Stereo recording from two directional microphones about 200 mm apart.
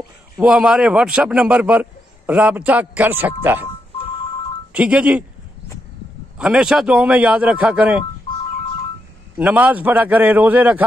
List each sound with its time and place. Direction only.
0.4 s a man's voice: 5° right (ahead or behind)
4.7 s speech: 5° right (ahead or behind)
6.3 s speech: 5° right (ahead or behind)
9.4 s a man's voice: 10° right (ahead or behind)